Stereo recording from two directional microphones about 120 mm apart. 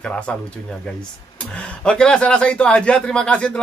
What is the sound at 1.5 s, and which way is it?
A man's voice, 10° left (ahead or behind).